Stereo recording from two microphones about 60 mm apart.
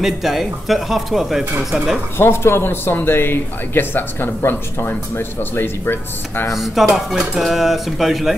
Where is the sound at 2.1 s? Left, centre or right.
Left.